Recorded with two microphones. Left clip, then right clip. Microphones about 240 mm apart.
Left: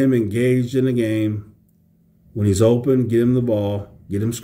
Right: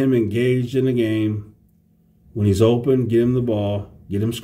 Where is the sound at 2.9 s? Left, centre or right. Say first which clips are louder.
Even; centre.